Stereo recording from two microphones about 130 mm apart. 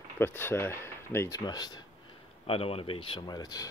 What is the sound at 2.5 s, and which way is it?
Speech, 50° left (ahead or behind).